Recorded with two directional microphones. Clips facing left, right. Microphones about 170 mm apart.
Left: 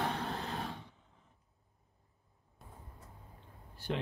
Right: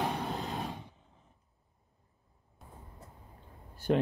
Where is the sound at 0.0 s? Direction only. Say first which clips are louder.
Right 3 dB; 15° right (ahead or behind).